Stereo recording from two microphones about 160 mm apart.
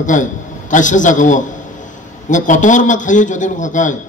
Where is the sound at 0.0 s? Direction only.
50° left (ahead or behind).